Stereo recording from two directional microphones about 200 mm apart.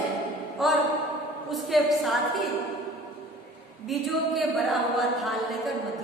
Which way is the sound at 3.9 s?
Centre (ahead or behind).